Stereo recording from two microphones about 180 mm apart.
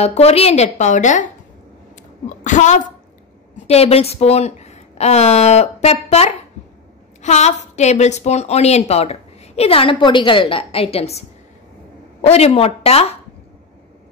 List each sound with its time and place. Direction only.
0.0 s a woman's voice: 35° left (ahead or behind)